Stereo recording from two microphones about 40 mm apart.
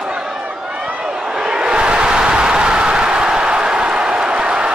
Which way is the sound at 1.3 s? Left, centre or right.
Centre.